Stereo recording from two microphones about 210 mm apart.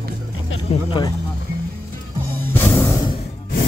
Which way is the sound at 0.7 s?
25° left (ahead or behind).